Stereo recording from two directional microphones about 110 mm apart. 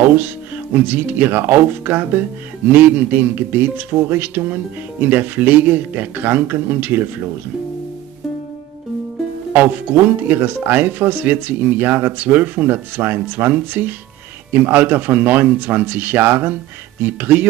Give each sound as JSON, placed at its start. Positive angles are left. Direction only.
{"t": 0.7, "sound": "speech", "side_deg": -15}
{"t": 9.5, "sound": "speech", "side_deg": -15}